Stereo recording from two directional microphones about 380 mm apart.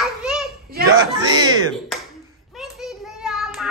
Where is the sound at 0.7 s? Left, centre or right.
Right.